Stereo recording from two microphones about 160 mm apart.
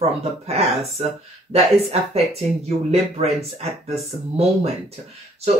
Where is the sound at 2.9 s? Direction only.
40° right (ahead or behind).